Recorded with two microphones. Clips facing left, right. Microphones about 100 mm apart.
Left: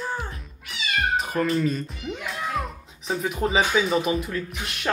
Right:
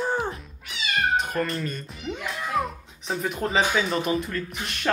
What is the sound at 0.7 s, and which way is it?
Cat, centre (ahead or behind).